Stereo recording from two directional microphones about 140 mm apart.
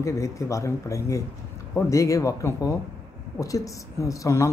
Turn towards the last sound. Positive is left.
turn(degrees=20)  # may be behind; listen again after turning